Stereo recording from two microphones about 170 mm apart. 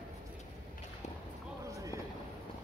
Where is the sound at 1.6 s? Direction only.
20° right (ahead or behind).